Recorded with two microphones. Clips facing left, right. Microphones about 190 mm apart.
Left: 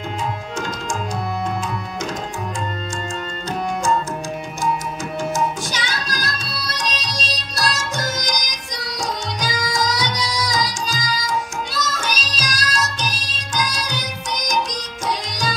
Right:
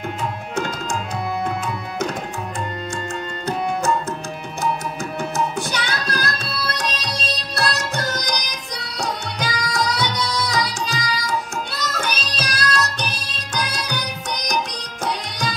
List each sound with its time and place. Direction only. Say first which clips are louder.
5.3 s music: right 1 dB; 60° right (ahead or behind)